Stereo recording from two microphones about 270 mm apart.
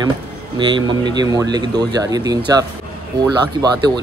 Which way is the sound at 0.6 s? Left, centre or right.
Centre.